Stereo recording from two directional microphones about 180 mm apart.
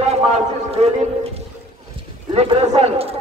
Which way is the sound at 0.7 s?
35° right (ahead or behind).